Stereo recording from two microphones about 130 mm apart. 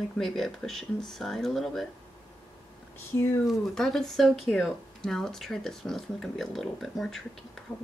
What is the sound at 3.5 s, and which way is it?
Speech, centre (ahead or behind).